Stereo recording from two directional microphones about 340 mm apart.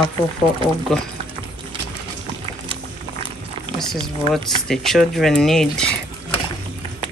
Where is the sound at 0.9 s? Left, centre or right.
Centre.